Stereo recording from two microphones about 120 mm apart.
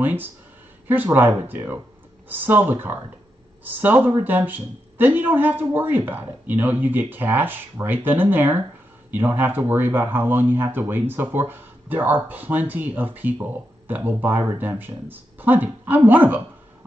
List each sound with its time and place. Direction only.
0.0 s speech: 15° right (ahead or behind)